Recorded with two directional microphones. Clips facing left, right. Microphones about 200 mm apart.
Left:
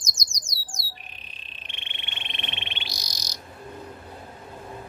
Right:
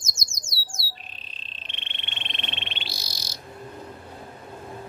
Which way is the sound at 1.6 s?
15° left (ahead or behind).